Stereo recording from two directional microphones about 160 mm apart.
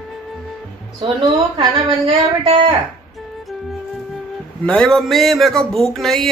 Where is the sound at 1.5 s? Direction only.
35° right (ahead or behind).